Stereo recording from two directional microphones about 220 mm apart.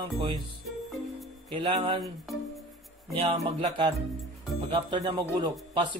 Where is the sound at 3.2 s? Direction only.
25° right (ahead or behind).